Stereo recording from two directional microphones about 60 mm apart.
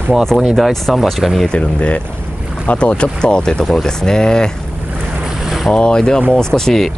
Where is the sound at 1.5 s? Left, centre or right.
Centre.